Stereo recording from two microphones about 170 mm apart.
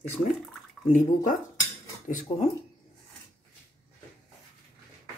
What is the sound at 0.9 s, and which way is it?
Speech, 50° left (ahead or behind).